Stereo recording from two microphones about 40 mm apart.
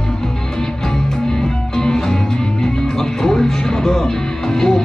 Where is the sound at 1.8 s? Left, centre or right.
Centre.